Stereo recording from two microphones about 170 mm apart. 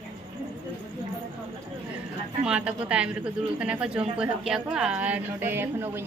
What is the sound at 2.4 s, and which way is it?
A woman's voice, 5° right (ahead or behind).